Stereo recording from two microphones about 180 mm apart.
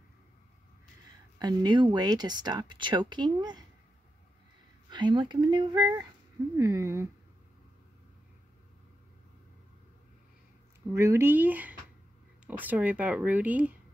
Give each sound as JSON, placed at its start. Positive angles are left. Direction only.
{"t": 1.4, "sound": "speech", "side_deg": -25}
{"t": 4.8, "sound": "speech", "side_deg": -25}
{"t": 10.9, "sound": "speech", "side_deg": -15}